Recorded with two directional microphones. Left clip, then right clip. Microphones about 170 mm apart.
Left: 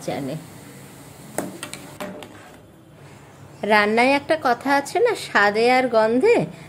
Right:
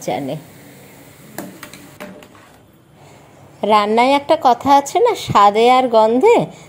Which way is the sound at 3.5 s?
15° right (ahead or behind).